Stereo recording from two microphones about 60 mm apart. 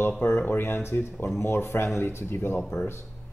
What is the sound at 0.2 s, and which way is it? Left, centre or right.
Speech, left.